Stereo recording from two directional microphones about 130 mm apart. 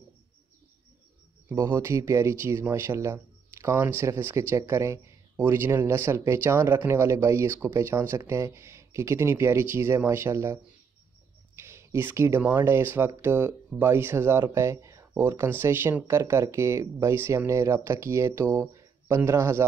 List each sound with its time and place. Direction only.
1.5 s speech: 20° right (ahead or behind)